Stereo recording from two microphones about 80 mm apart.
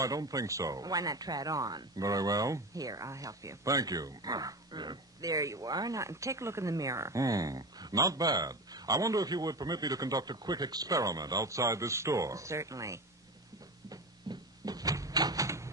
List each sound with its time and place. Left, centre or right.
0.0 s speech: right
13.8 s cupboard open or close: right